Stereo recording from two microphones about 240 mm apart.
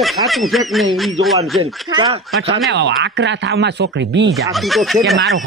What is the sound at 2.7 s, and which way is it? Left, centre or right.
Speech, right.